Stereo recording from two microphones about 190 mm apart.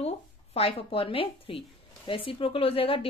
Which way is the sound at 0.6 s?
30° left (ahead or behind).